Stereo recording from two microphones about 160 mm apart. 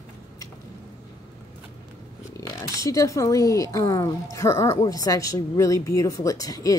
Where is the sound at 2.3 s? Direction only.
20° left (ahead or behind).